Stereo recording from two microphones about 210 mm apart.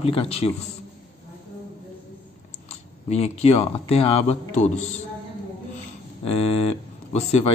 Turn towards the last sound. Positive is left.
turn(degrees=30)  # may be behind; listen again after turning